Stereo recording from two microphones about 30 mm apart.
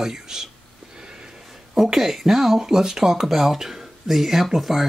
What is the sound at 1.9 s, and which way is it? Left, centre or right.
Speech, centre.